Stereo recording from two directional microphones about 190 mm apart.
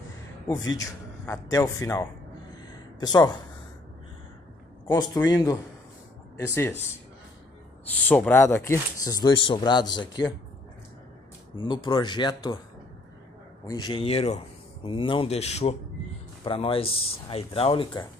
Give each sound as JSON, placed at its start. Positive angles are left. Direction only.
{"t": 0.7, "sound": "speech", "side_deg": 15}
{"t": 4.8, "sound": "speech", "side_deg": 20}
{"t": 8.0, "sound": "speech", "side_deg": 5}
{"t": 11.5, "sound": "speech", "side_deg": 25}
{"t": 13.7, "sound": "speech", "side_deg": 20}